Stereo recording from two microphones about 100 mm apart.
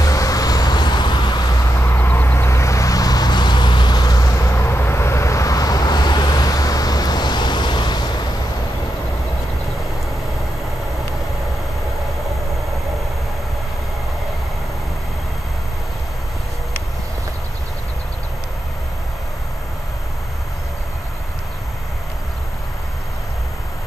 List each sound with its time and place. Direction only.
0.0 s vehicle: 35° left (ahead or behind)
1.8 s vehicle: 20° left (ahead or behind); by 8.2 s 45° left (ahead or behind)